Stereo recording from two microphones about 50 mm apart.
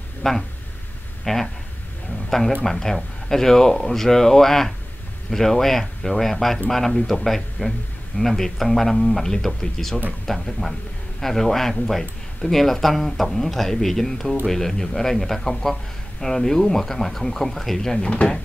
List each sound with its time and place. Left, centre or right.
0.2 s a man's voice: centre
18.0 s speech: left